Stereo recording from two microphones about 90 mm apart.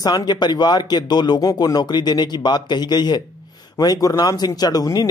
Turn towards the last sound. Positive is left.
turn(degrees=45)  # may be behind; listen again after turning